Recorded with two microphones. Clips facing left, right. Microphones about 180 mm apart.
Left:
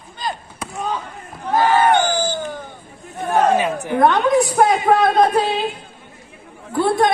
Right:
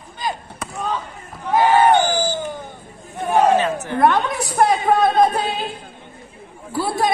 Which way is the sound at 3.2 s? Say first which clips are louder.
Right 1 dB; 10° right (ahead or behind).